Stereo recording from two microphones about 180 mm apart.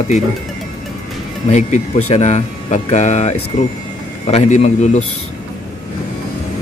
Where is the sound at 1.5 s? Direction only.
40° left (ahead or behind).